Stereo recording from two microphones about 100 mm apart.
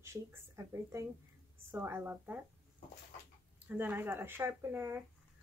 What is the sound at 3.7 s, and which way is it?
A woman's voice, 20° right (ahead or behind).